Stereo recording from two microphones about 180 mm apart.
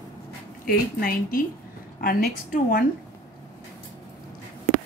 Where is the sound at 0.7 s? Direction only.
55° left (ahead or behind).